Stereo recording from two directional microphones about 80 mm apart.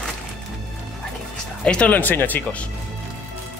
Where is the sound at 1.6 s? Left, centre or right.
Centre.